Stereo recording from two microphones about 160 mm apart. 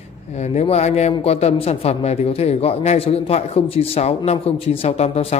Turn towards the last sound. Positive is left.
turn(degrees=40)  # may be behind; listen again after turning